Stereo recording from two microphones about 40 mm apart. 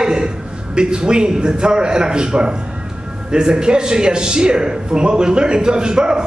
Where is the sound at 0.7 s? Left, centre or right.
Right.